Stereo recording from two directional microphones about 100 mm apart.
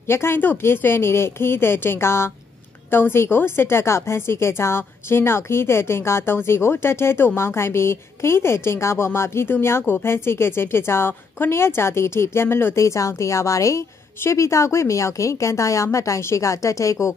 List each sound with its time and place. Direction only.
0.1 s a woman's voice: 25° left (ahead or behind)